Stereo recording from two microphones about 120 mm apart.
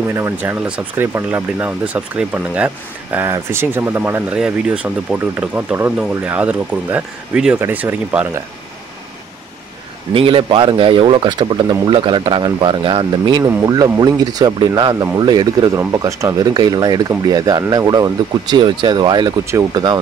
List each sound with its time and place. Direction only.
0.1 s speech: 20° right (ahead or behind)
10.1 s a man's voice: 50° right (ahead or behind)
13.4 s speech: 30° right (ahead or behind)